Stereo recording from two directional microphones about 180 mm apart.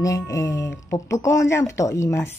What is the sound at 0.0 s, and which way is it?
Speech, 15° left (ahead or behind).